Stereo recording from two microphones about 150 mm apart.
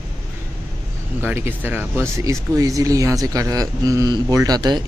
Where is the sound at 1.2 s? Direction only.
15° right (ahead or behind).